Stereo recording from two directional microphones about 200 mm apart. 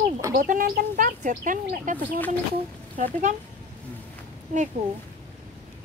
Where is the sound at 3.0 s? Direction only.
40° right (ahead or behind).